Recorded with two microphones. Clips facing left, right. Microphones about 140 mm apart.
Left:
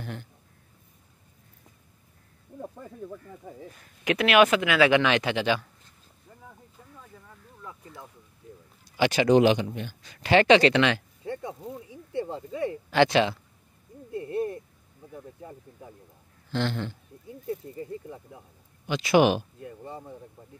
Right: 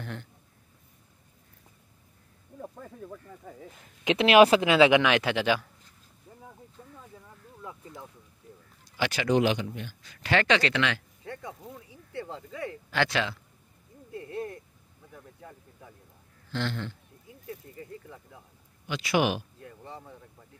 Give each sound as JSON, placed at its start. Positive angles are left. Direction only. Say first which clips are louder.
{"t": 0.0, "sound": "speech", "louder": "left 1 dB", "side_deg": 10}
{"t": 2.6, "sound": "speech", "louder": "left 3 dB", "side_deg": 10}
{"t": 3.7, "sound": "speech", "louder": "even", "side_deg": -25}
{"t": 5.0, "sound": "speech", "louder": "even", "side_deg": -5}
{"t": 8.9, "sound": "speech", "louder": "left 6 dB", "side_deg": 20}
{"t": 14.1, "sound": "a sound", "louder": "left 6 dB", "side_deg": 20}
{"t": 15.1, "sound": "speech", "louder": "left 6 dB", "side_deg": 25}
{"t": 19.6, "sound": "speech", "louder": "left 5 dB", "side_deg": 15}